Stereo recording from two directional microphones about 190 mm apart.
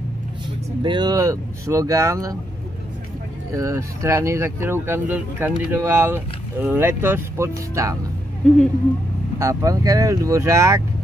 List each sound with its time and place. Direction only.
0.8 s speech: 20° right (ahead or behind)
3.5 s speech: 15° right (ahead or behind)
9.4 s speech: 15° right (ahead or behind)